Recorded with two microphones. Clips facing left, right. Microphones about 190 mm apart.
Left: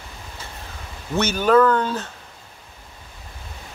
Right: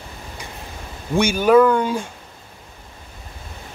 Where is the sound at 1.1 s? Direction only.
10° right (ahead or behind).